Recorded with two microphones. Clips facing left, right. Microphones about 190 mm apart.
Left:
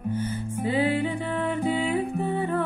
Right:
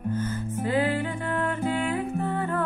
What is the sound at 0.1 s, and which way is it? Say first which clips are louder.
Music: even; 10° left (ahead or behind).